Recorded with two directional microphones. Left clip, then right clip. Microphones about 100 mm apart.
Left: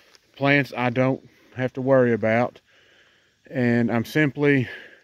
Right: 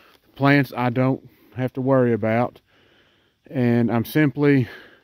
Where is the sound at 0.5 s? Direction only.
35° right (ahead or behind).